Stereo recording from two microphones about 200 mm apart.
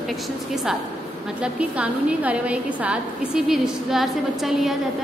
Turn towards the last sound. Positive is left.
turn(degrees=0)  # may be behind; listen again after turning